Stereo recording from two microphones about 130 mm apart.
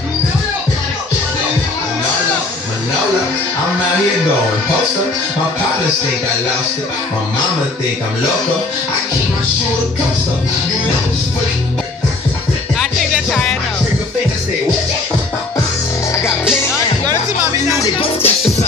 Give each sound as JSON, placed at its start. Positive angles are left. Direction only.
{"t": 13.3, "sound": "music", "side_deg": 5}
{"t": 17.9, "sound": "music", "side_deg": 50}